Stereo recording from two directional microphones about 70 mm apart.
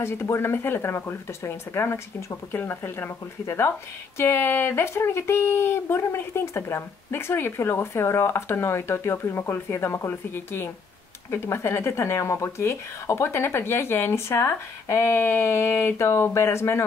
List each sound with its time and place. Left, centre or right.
0.0 s speech: left